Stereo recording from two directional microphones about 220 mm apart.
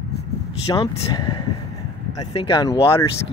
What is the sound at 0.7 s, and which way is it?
Speech, 15° left (ahead or behind).